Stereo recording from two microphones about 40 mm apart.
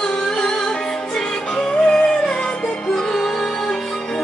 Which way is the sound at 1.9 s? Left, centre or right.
Centre.